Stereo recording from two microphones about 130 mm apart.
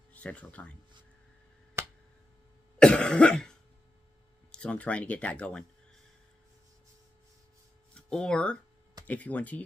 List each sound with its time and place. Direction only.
0.1 s speech: 10° left (ahead or behind)
1.8 s a sound: 20° right (ahead or behind)
2.8 s cough: 5° left (ahead or behind)
4.5 s speech: 10° left (ahead or behind)
7.9 s speech: 5° left (ahead or behind)